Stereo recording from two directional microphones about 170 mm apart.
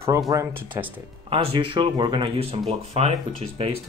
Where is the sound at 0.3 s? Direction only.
15° right (ahead or behind).